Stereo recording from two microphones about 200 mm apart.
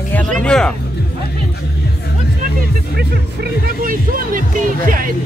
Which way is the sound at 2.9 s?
50° right (ahead or behind).